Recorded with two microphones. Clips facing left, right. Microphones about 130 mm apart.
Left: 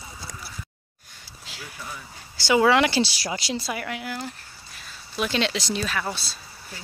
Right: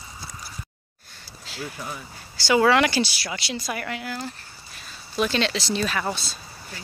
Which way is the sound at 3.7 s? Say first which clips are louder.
Even; 10° left (ahead or behind).